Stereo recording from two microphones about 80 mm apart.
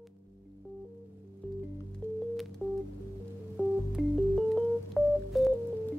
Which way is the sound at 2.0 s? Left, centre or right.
Left.